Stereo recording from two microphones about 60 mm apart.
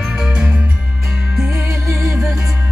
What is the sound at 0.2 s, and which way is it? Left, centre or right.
Music, centre.